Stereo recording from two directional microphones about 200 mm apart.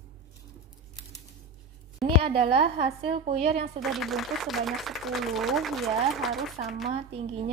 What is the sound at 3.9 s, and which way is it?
Speech, centre (ahead or behind).